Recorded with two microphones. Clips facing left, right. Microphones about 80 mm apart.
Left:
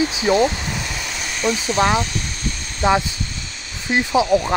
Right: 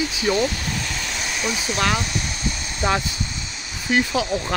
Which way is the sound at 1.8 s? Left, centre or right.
Left.